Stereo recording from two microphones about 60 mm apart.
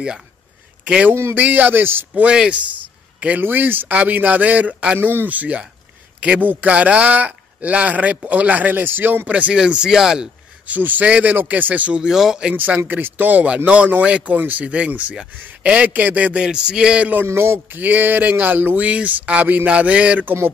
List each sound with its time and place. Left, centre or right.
1.3 s speech: right
2.1 s speech: centre
9.6 s a sound: centre
10.7 s speech: right
12.0 s a sound: centre
12.5 s speech: right
16.3 s a sound: centre
17.3 s a man's voice: right
17.7 s speech: right